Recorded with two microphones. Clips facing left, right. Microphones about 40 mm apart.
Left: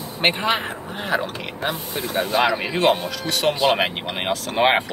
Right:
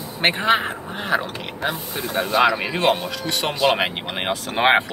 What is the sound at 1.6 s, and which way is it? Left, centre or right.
Speech, centre.